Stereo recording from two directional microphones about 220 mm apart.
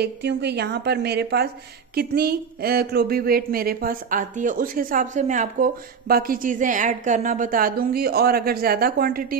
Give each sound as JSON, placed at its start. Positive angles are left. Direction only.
{"t": 0.0, "sound": "a woman's voice", "side_deg": -50}